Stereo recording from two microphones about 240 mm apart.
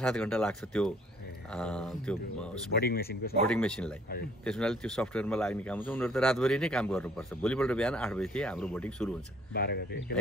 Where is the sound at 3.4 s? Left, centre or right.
Centre.